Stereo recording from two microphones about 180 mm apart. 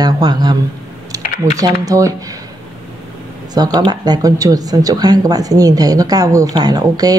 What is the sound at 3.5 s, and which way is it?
A woman's voice, 20° right (ahead or behind).